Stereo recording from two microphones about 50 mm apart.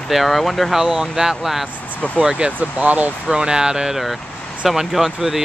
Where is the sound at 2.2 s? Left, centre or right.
Right.